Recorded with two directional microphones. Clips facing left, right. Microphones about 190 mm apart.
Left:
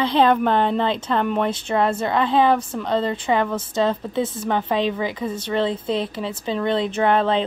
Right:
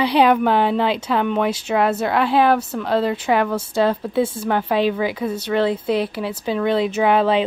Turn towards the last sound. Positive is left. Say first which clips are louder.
# right 2 dB
turn(degrees=-10)  # may be behind; listen again after turning